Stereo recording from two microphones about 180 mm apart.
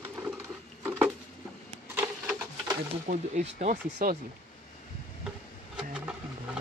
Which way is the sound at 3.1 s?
45° right (ahead or behind).